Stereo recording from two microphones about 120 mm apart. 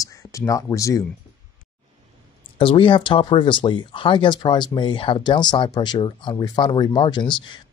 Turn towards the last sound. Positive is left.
turn(degrees=40)  # may be behind; listen again after turning